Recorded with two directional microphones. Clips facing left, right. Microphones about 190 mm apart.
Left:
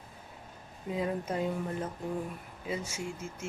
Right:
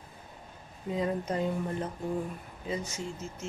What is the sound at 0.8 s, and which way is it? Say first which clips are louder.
Speech: right 2 dB; 5° left (ahead or behind).